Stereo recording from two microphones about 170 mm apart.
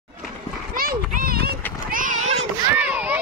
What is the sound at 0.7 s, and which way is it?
Run, 55° right (ahead or behind).